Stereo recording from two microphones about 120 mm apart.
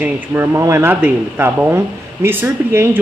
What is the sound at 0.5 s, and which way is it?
Speech, 25° right (ahead or behind).